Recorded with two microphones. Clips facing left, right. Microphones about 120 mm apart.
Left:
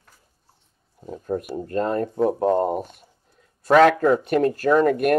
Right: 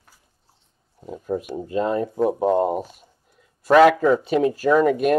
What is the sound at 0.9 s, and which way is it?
A man's voice, 5° right (ahead or behind).